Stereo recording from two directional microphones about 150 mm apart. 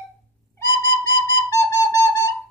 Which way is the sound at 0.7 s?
20° left (ahead or behind).